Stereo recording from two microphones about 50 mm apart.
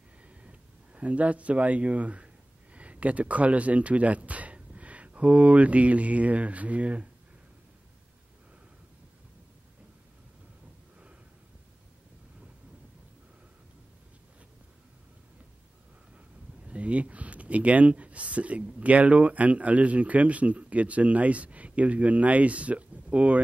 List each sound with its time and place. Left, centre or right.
0.3 s speech: right
16.6 s speech: right